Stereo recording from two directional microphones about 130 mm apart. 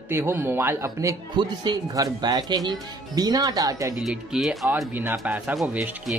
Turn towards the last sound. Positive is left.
turn(degrees=0)  # may be behind; listen again after turning